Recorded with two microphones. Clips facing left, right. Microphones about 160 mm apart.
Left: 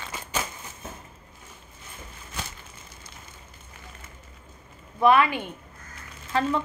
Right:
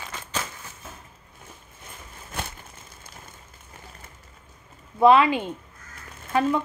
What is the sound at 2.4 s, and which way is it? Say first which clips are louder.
Crushing: right 3 dB; 55° right (ahead or behind).